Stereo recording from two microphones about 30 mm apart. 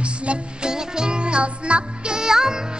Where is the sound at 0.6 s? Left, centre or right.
Right.